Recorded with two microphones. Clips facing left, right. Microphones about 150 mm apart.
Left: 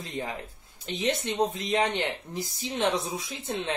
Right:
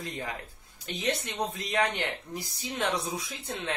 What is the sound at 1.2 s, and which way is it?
Speech, 25° left (ahead or behind).